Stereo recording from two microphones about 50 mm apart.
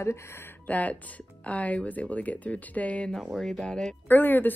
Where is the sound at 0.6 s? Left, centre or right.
Left.